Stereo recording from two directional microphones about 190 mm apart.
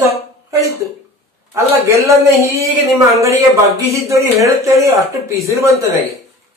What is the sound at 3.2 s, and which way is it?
Speech, 15° right (ahead or behind).